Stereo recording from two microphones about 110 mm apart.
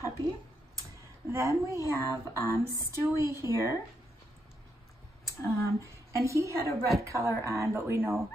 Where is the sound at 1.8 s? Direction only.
30° left (ahead or behind).